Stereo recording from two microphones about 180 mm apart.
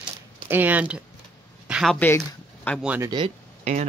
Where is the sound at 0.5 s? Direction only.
10° right (ahead or behind).